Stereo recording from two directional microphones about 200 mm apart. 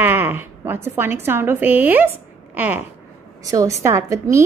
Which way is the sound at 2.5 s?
10° right (ahead or behind).